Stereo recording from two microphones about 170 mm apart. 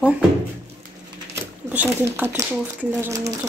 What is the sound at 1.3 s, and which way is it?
Speech, 10° right (ahead or behind).